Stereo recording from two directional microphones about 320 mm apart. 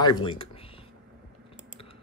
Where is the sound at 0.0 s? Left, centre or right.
Centre.